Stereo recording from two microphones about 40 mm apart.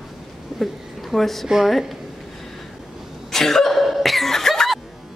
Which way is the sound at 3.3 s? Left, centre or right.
Centre.